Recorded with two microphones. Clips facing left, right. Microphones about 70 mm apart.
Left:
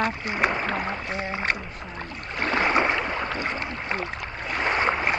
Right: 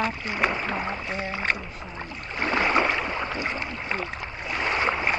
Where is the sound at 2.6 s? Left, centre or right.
Centre.